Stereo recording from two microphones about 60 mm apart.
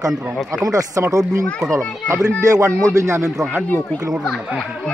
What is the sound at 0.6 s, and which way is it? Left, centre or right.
Speech, right.